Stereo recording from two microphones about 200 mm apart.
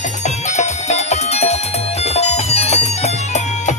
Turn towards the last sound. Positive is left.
turn(degrees=35)  # may be behind; listen again after turning